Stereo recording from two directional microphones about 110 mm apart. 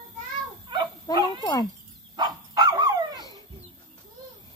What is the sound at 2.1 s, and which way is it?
Dog, 40° right (ahead or behind).